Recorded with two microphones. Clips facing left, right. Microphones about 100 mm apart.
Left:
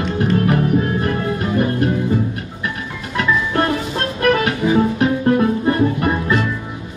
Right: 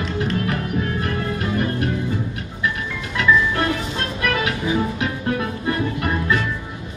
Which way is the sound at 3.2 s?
40° left (ahead or behind).